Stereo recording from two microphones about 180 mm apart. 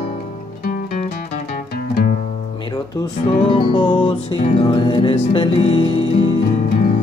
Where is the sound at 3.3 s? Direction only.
30° left (ahead or behind).